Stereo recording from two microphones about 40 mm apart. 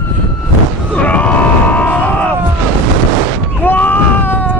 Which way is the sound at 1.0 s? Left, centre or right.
Left.